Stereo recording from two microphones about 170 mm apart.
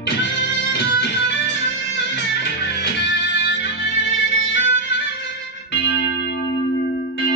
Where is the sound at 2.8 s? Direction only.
90° left.